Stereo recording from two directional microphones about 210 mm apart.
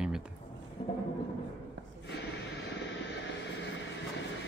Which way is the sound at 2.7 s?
55° left (ahead or behind).